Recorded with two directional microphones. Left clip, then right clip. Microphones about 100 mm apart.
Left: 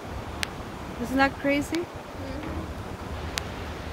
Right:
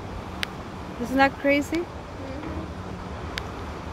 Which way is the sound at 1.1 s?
10° right (ahead or behind).